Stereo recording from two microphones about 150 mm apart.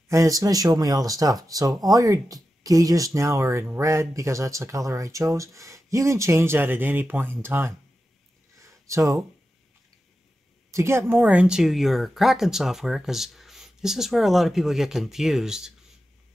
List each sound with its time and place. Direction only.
0.1 s speech: 20° right (ahead or behind)
8.5 s a sound: 20° right (ahead or behind)
10.7 s speech: 20° right (ahead or behind)